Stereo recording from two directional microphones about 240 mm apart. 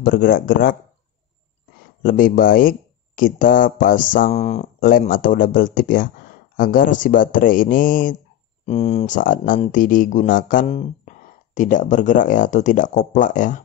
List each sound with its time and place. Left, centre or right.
0.0 s speech: left
2.0 s speech: left